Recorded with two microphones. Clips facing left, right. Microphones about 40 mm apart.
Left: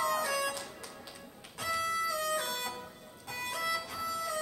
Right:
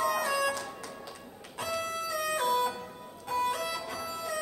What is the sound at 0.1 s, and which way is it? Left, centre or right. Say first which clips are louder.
Music: right 2 dB; centre.